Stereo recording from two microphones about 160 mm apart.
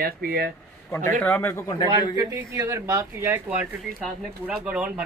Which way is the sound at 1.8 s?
25° right (ahead or behind).